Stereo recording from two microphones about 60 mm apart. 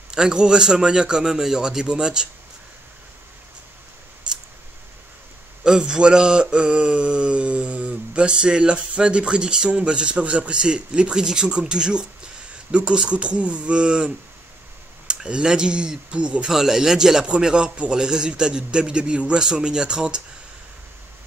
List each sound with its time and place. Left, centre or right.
0.1 s mantra: centre
4.2 s scissors: centre
5.6 s mantra: centre
12.7 s speech: centre
15.0 s mantra: centre
16.4 s mantra: centre